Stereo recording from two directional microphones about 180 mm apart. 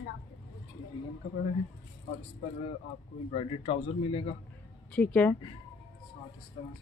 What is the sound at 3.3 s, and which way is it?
Speech, 30° left (ahead or behind).